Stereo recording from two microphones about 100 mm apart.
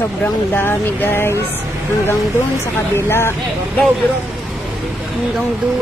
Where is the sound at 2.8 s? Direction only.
25° left (ahead or behind).